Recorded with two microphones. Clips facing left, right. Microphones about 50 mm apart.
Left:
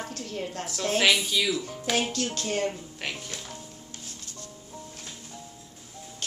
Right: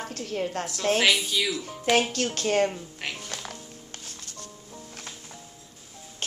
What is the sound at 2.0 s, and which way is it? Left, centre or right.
Speech, right.